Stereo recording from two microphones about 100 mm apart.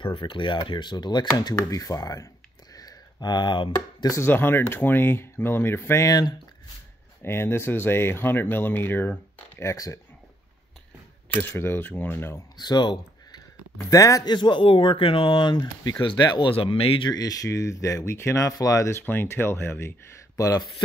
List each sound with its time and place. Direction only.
0.0 s speech: 55° left (ahead or behind); by 2.2 s 35° left (ahead or behind)
2.7 s a sound: 40° left (ahead or behind)
4.1 s speech: 25° left (ahead or behind)
6.0 s speech: 40° left (ahead or behind)
7.2 s speech: 25° left (ahead or behind)
9.6 s speech: 30° left (ahead or behind)
11.4 s speech: 25° left (ahead or behind)
12.5 s speech: 45° left (ahead or behind)
14.3 s speech: 50° left (ahead or behind)
16.5 s speech: 75° left (ahead or behind)
17.1 s speech: 40° left (ahead or behind)
20.3 s a man's voice: 35° left (ahead or behind)